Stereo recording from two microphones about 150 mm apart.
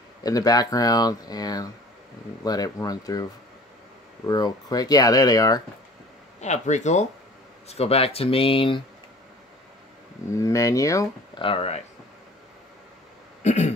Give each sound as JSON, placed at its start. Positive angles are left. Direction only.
{"t": 0.2, "sound": "speech", "side_deg": 25}
{"t": 4.3, "sound": "speech", "side_deg": 25}
{"t": 6.4, "sound": "speech", "side_deg": 50}
{"t": 10.3, "sound": "speech", "side_deg": 20}
{"t": 11.3, "sound": "speech", "side_deg": 35}
{"t": 13.4, "sound": "throat clearing", "side_deg": 50}